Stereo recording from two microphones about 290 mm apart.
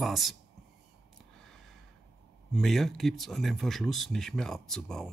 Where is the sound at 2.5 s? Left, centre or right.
Centre.